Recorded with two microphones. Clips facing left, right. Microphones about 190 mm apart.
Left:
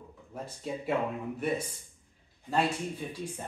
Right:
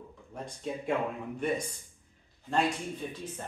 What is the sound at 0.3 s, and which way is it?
Speech, 5° left (ahead or behind).